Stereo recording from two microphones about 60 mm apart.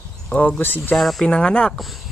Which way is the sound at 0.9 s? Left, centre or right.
Centre.